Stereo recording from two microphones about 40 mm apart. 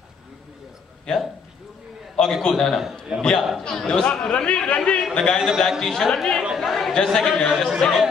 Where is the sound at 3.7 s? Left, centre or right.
Centre.